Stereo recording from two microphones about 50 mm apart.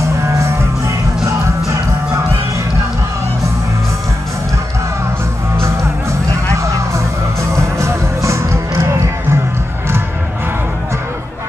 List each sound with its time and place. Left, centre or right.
0.2 s music: right
5.6 s music: right